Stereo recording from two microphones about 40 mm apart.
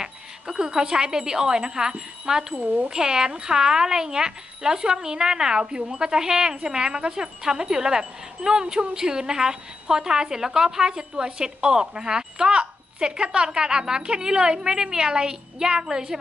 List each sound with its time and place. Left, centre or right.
0.0 s speech: centre
2.5 s speech: right
2.9 s speech: centre